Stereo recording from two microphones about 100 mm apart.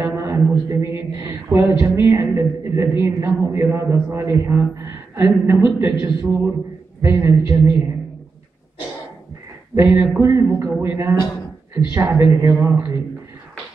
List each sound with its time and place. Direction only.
0.0 s a man's voice: 25° right (ahead or behind)
3.3 s a man's voice: 20° right (ahead or behind)
9.9 s a man's voice: 25° right (ahead or behind)